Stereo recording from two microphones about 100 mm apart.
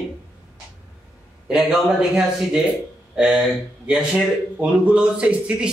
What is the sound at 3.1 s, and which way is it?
Speech, 5° right (ahead or behind).